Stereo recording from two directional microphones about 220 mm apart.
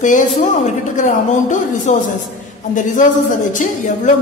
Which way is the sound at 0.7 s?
35° left (ahead or behind).